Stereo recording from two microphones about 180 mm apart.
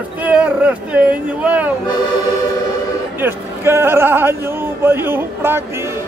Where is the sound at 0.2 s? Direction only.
10° right (ahead or behind).